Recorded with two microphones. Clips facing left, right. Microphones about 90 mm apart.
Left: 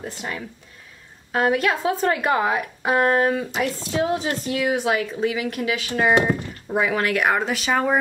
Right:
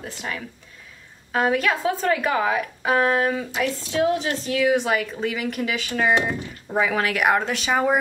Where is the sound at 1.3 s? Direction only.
10° left (ahead or behind).